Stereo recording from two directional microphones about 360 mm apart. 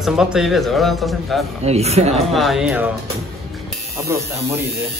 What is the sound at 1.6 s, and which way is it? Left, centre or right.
Speech, centre.